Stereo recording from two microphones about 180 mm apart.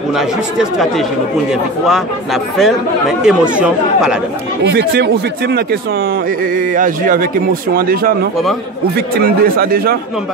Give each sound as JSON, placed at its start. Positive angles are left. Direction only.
{"t": 0.1, "sound": "speech", "side_deg": 0}
{"t": 4.7, "sound": "a man's voice", "side_deg": -65}
{"t": 6.5, "sound": "a man's voice", "side_deg": -50}